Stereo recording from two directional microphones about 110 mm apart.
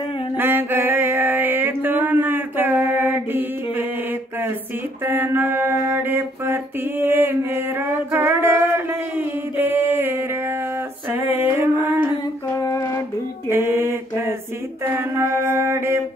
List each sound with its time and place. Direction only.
0.4 s a sound: 20° right (ahead or behind)
5.0 s mantra: 20° right (ahead or behind)
8.1 s music: 20° right (ahead or behind)
13.5 s mantra: 20° right (ahead or behind)
15.0 s music: 25° right (ahead or behind)